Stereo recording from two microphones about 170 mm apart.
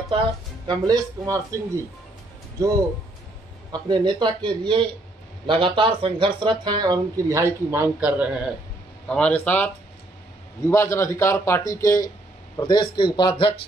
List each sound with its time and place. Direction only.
0.7 s speech: 20° right (ahead or behind)
3.7 s speech: 25° right (ahead or behind); by 8.5 s 5° right (ahead or behind)
9.0 s a man's voice: 5° left (ahead or behind)
10.7 s a man's voice: 15° left (ahead or behind)